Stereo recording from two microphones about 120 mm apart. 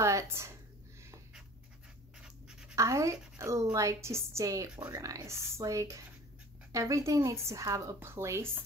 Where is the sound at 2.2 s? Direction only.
5° right (ahead or behind).